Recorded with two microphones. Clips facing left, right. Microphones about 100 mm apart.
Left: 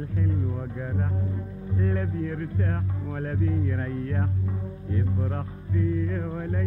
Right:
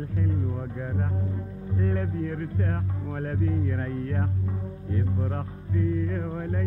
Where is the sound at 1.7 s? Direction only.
40° right (ahead or behind).